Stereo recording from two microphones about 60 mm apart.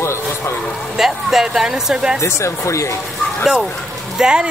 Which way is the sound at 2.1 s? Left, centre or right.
Left.